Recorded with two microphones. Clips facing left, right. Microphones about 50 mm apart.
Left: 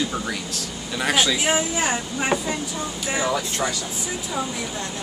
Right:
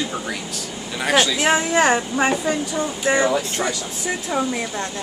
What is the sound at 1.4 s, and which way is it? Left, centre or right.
Speech, right.